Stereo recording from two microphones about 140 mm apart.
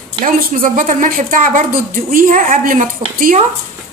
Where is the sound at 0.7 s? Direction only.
70° right (ahead or behind).